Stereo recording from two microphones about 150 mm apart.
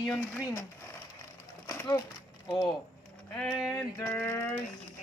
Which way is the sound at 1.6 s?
20° left (ahead or behind).